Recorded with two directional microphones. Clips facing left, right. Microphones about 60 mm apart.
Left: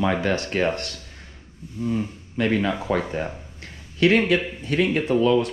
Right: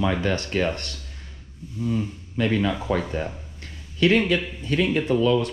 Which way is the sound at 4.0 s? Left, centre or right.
Left.